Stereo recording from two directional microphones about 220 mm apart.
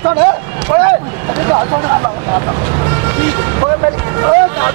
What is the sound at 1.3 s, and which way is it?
Speech, 20° right (ahead or behind).